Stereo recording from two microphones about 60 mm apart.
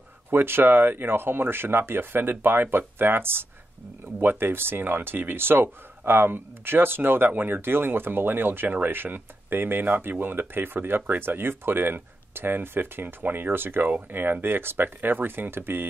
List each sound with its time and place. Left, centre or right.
0.3 s speech: right